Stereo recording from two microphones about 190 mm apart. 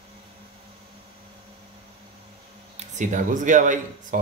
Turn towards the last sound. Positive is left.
turn(degrees=-40)  # may be behind; listen again after turning